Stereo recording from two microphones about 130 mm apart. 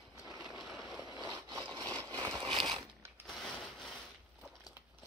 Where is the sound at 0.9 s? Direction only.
25° right (ahead or behind).